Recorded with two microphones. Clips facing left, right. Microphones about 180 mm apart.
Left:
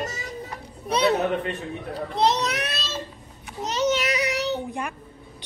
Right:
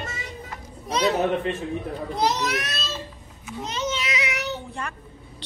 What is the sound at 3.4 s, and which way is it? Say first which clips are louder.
Speech: left 4 dB; 35° left (ahead or behind).